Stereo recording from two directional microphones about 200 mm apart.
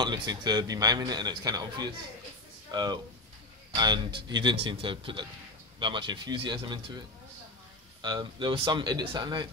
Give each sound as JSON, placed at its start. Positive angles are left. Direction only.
{"t": 0.0, "sound": "speech", "side_deg": -20}
{"t": 8.0, "sound": "speech", "side_deg": -20}